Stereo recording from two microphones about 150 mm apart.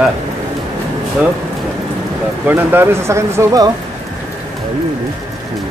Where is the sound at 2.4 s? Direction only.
15° right (ahead or behind).